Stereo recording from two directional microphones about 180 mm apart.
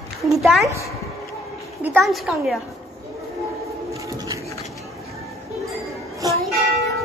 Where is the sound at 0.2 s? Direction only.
Centre (ahead or behind).